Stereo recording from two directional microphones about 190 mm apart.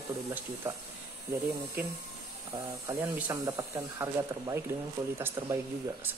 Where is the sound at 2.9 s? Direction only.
15° right (ahead or behind).